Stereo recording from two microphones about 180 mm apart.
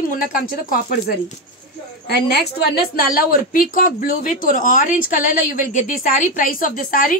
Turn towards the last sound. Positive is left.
turn(degrees=50)  # may be behind; listen again after turning